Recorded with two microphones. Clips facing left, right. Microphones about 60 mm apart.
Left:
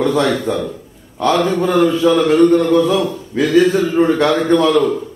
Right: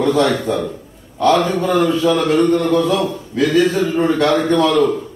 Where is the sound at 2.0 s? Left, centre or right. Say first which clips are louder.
Left 5 dB; centre.